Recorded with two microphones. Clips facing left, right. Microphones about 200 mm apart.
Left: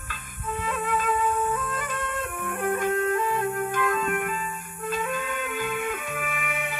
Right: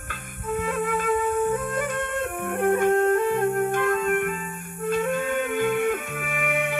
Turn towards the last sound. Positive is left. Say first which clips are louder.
# right 5 dB
turn(degrees=-60)  # may be behind; listen again after turning